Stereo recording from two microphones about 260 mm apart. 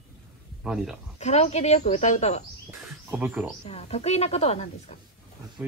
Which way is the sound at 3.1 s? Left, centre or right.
Centre.